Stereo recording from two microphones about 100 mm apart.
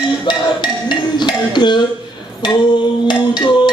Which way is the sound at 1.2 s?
50° left (ahead or behind).